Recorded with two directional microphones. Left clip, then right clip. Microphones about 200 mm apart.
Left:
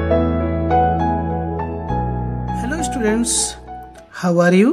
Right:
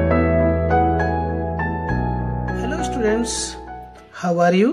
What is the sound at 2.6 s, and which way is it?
Music, 30° left (ahead or behind).